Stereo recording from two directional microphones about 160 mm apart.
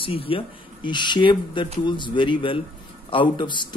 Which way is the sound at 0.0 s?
35° left (ahead or behind).